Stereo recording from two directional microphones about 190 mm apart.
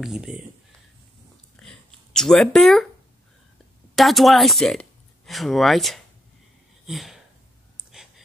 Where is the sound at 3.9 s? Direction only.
Centre (ahead or behind).